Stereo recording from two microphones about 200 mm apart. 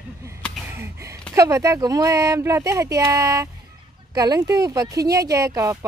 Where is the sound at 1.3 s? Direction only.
15° right (ahead or behind).